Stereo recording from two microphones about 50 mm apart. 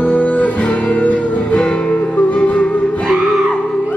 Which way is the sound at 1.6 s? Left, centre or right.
Centre.